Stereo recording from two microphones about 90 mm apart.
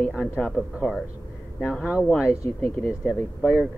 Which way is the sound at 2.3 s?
35° left (ahead or behind).